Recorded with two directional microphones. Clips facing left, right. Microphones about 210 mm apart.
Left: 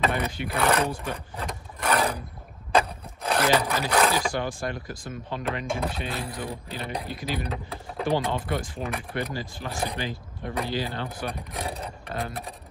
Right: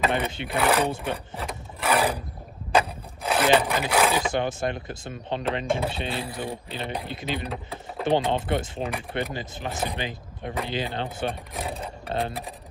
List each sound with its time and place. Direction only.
0.1 s a sound: 25° right (ahead or behind)
0.6 s speech: centre (ahead or behind)
1.3 s vehicle: 5° right (ahead or behind)
2.7 s wood: 5° right (ahead or behind)
4.2 s speech: 20° right (ahead or behind)
11.5 s speech: centre (ahead or behind)
11.8 s speech: 30° right (ahead or behind)